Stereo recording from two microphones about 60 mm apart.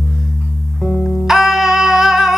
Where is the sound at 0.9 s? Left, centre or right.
Centre.